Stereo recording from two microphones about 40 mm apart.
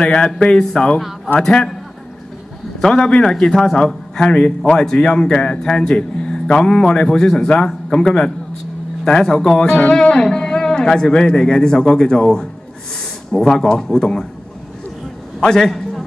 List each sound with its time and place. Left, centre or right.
0.0 s a man's voice: left
2.8 s a man's voice: left
15.4 s a man's voice: centre